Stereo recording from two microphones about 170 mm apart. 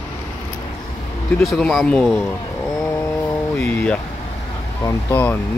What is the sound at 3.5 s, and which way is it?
Speech, 10° left (ahead or behind).